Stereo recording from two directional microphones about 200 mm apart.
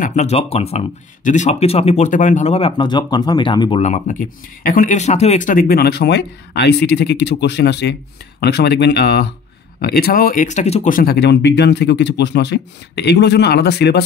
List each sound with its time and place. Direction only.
0.0 s speech: 35° left (ahead or behind)
3.8 s speech: 40° left (ahead or behind); by 14.0 s 55° left (ahead or behind)